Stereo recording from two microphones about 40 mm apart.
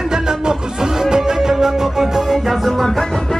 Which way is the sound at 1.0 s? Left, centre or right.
Centre.